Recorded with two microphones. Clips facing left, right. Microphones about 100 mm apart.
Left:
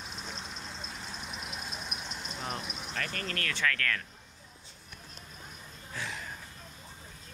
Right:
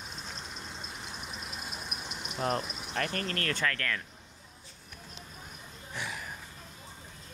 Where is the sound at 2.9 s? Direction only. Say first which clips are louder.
Right 5 dB; 25° right (ahead or behind).